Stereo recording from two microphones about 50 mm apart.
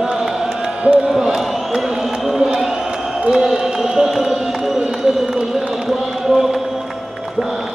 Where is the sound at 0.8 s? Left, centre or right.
Right.